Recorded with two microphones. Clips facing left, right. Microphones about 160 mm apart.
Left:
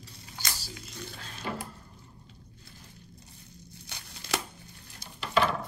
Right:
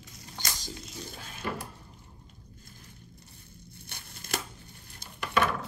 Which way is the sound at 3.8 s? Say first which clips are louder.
Left 1 dB; 55° right (ahead or behind).